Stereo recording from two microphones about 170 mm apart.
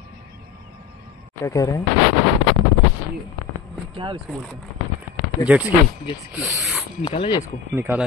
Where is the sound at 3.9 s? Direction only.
30° right (ahead or behind).